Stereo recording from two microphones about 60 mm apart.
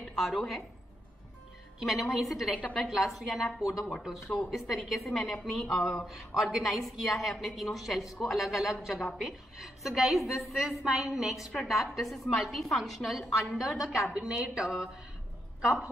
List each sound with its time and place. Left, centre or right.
0.2 s a woman's voice: centre
1.8 s a woman's voice: centre
14.2 s a woman's voice: centre